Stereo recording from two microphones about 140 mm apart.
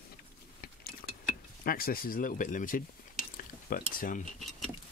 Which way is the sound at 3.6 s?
90° left.